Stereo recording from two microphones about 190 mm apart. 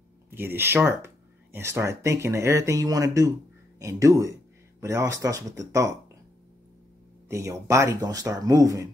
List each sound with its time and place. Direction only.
0.3 s speech: 10° right (ahead or behind)
7.2 s speech: 15° right (ahead or behind)